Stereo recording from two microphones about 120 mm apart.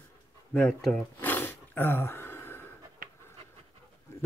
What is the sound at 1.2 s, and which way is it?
Gasp, 15° left (ahead or behind).